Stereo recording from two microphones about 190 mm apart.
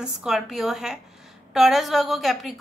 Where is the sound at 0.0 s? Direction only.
5° right (ahead or behind).